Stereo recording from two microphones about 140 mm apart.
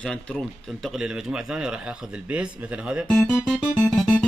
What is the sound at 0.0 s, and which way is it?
Speech, 5° left (ahead or behind).